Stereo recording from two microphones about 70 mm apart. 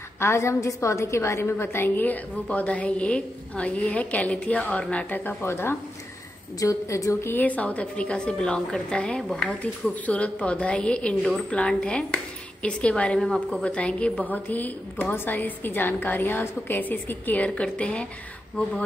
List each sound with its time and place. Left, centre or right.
0.2 s a woman's voice: left
2.4 s a woman's voice: centre; by 5.8 s left
6.6 s speech: left
7.4 s a woman's voice: left
13.3 s a woman's voice: centre
13.7 s a woman's voice: centre